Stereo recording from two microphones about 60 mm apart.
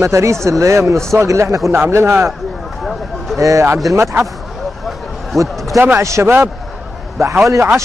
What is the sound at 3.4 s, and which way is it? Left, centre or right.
Speech, right.